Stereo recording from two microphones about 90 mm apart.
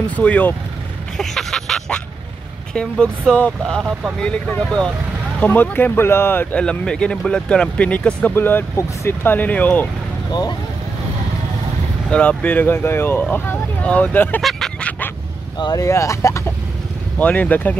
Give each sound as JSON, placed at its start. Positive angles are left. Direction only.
{"t": 0.1, "sound": "speech", "side_deg": 15}
{"t": 1.1, "sound": "a sound", "side_deg": 5}
{"t": 2.7, "sound": "speech", "side_deg": 10}
{"t": 5.4, "sound": "speech", "side_deg": 20}
{"t": 6.5, "sound": "speech", "side_deg": 10}
{"t": 12.1, "sound": "speech", "side_deg": 15}
{"t": 14.8, "sound": "a sound", "side_deg": 15}
{"t": 15.6, "sound": "speech", "side_deg": 45}
{"t": 15.9, "sound": "speech", "side_deg": 35}
{"t": 17.2, "sound": "speech", "side_deg": 15}